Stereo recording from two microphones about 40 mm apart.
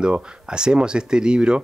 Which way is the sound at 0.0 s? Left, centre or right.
Right.